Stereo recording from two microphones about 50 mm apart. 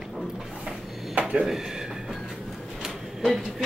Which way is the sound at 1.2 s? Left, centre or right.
Right.